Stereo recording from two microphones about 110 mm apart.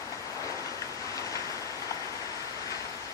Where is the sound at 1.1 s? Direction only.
30° left (ahead or behind).